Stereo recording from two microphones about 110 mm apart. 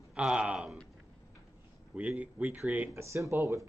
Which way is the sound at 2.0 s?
10° right (ahead or behind).